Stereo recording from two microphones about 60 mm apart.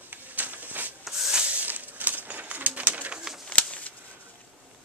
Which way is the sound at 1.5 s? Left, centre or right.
Right.